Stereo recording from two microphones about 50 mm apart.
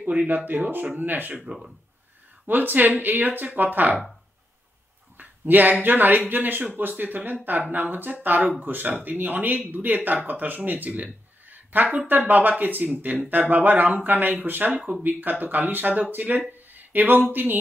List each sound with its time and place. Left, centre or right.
0.0 s speech: right
1.4 s speech: centre
2.4 s speech: right
5.1 s speech: right